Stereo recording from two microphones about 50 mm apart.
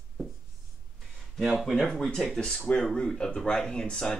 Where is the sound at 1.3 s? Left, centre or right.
Centre.